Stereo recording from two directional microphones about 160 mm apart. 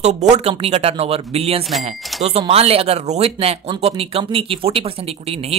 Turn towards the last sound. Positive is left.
turn(degrees=-40)  # may be behind; listen again after turning